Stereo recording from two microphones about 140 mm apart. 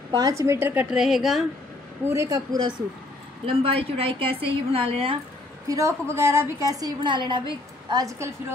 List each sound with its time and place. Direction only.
0.1 s a woman's voice: 25° right (ahead or behind); by 1.4 s centre (ahead or behind)
2.0 s a woman's voice: 25° right (ahead or behind)
3.4 s a woman's voice: 40° right (ahead or behind)
5.7 s a woman's voice: 20° right (ahead or behind)